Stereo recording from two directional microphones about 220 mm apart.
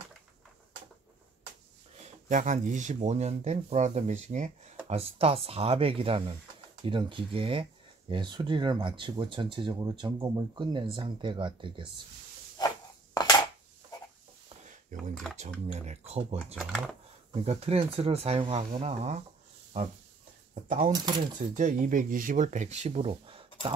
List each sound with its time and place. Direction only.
2.0 s speech: 35° right (ahead or behind)
12.5 s a sound: 15° left (ahead or behind)
14.6 s a sound: 35° right (ahead or behind)
15.7 s speech: 30° right (ahead or behind)
16.5 s speech: centre (ahead or behind)
17.3 s speech: 30° right (ahead or behind)
20.6 s speech: 35° right (ahead or behind)